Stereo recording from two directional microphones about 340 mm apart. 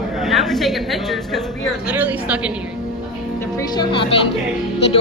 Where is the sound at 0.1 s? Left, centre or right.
Centre.